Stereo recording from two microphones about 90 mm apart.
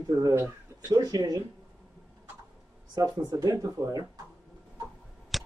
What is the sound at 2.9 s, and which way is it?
Speech, 45° right (ahead or behind).